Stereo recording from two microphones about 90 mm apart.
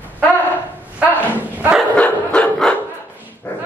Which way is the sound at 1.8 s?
15° left (ahead or behind).